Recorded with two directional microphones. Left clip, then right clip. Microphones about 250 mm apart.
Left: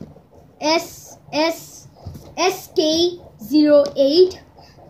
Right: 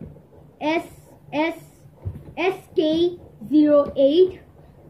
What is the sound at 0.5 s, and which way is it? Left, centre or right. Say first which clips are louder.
Babbling: left 5 dB; centre.